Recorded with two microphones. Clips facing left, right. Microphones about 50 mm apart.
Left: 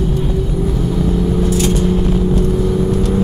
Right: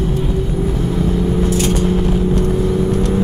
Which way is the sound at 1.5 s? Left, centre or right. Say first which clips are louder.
Left 1 dB; right.